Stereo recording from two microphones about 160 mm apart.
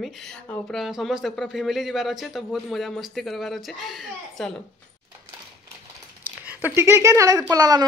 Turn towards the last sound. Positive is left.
turn(degrees=-25)  # may be behind; listen again after turning